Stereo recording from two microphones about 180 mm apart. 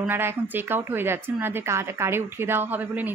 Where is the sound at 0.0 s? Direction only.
10° right (ahead or behind).